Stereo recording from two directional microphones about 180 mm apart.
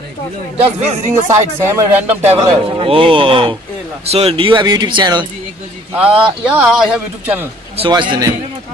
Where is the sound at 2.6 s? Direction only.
30° right (ahead or behind).